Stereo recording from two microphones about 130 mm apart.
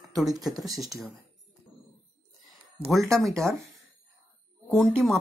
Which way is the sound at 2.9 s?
Centre (ahead or behind).